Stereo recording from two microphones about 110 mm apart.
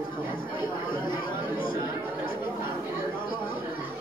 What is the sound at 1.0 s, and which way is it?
Chatter, 45° left (ahead or behind).